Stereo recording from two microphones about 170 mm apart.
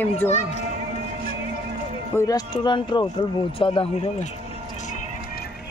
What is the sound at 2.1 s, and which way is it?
A man's voice, 20° left (ahead or behind).